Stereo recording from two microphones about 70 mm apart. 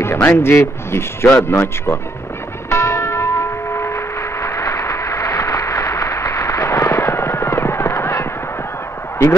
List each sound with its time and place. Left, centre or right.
0.0 s speech: left
2.7 s church bell: left